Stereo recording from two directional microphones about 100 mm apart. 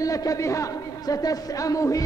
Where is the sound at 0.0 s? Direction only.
35° left (ahead or behind).